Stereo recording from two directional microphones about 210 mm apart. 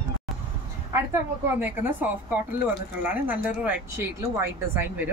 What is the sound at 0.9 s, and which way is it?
Speech, 10° right (ahead or behind).